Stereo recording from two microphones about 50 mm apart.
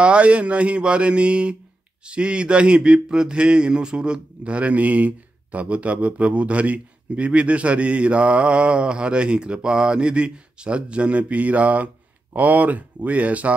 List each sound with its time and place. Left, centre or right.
0.0 s speech: right